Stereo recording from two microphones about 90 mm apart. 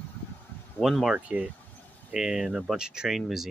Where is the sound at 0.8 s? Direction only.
Centre (ahead or behind).